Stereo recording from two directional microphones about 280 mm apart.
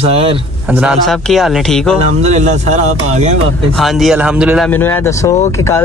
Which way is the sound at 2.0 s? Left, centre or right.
Right.